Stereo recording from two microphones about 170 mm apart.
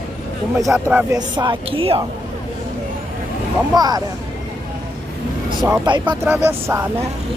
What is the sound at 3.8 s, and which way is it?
Speech, 20° right (ahead or behind).